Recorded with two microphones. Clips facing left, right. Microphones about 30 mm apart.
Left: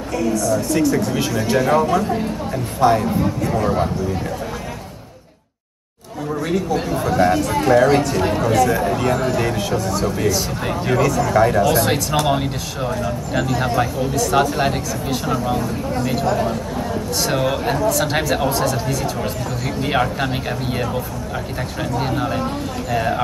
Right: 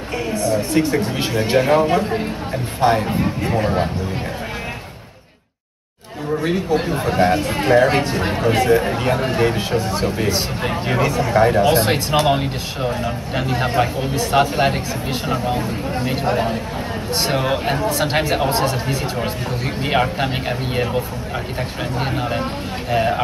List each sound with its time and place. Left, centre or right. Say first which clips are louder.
0.2 s speech: left 1 dB; right
6.4 s speech: right 1 dB; right
19.9 s speech: right 1 dB; centre
21.9 s speech: left 1 dB; centre